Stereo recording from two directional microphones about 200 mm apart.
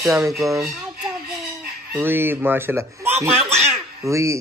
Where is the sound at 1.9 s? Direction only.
10° right (ahead or behind).